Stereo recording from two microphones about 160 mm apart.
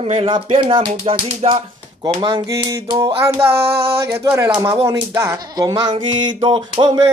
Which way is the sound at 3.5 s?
80° right.